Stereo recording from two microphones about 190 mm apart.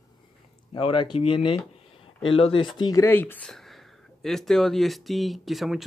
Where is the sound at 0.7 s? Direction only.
25° left (ahead or behind).